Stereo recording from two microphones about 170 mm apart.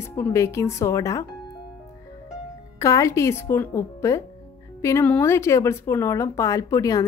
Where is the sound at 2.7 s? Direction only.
20° left (ahead or behind).